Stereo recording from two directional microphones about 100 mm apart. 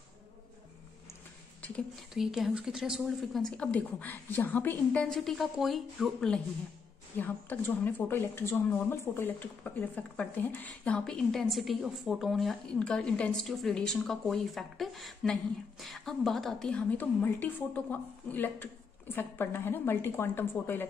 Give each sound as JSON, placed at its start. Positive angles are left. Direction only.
{"t": 2.1, "sound": "a woman's voice", "side_deg": -5}
{"t": 3.5, "sound": "a woman's voice", "side_deg": 15}
{"t": 5.0, "sound": "a woman's voice", "side_deg": 5}
{"t": 7.2, "sound": "a woman's voice", "side_deg": 20}